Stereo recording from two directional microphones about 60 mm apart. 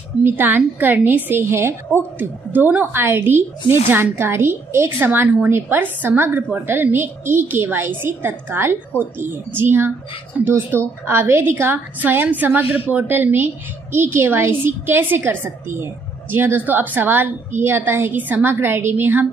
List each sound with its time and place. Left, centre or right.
0.2 s a woman's voice: right